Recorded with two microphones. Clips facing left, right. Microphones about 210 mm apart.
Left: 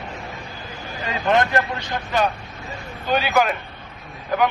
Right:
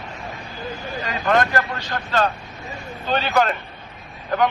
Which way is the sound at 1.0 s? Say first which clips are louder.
Left 1 dB; 20° left (ahead or behind).